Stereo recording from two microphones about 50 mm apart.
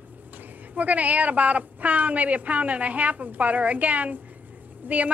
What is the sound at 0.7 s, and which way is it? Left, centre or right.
A woman's voice, right.